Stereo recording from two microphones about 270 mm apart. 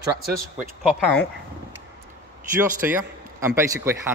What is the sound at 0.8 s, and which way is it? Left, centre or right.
Speech, centre.